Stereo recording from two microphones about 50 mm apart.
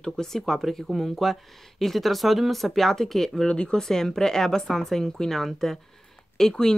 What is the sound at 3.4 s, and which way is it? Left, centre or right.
Speech, centre.